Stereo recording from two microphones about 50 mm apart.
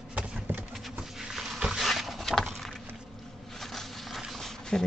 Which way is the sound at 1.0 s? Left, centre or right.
Centre.